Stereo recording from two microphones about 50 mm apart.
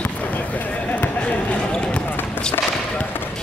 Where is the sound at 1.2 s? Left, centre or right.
Left.